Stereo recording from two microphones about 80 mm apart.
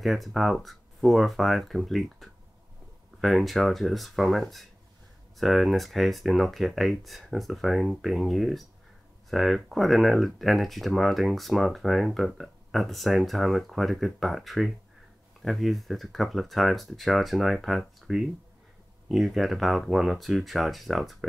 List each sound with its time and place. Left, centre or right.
0.0 s speech: centre